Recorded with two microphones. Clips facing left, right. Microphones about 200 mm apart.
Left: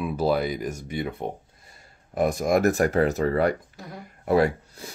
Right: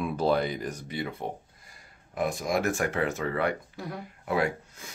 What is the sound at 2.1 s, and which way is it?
Speech, 40° left (ahead or behind).